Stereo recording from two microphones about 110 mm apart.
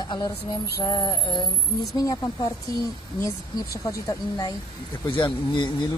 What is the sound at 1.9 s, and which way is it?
Speech, 30° left (ahead or behind).